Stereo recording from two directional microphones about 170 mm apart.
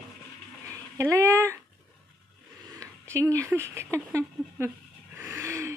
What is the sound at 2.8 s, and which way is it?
Speech, 20° right (ahead or behind).